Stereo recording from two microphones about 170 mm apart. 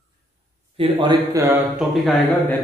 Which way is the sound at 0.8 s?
30° right (ahead or behind).